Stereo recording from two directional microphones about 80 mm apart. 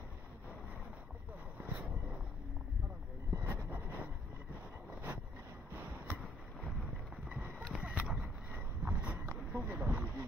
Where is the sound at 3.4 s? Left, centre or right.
Right.